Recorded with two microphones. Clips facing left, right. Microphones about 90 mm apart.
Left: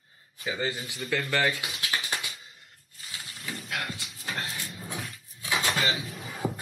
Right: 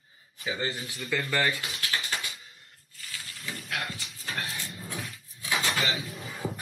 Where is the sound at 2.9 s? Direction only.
25° left (ahead or behind).